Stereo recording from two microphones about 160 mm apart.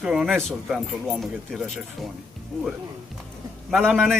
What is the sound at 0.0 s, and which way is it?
Speech, centre (ahead or behind).